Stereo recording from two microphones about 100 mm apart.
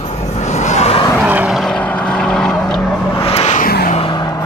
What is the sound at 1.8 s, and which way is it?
Vehicle, 10° left (ahead or behind).